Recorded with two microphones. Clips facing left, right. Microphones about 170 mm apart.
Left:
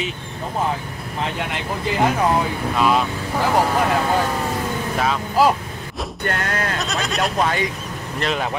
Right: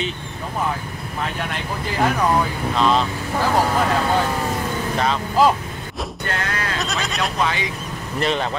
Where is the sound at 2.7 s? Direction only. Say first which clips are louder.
Even; 10° left (ahead or behind).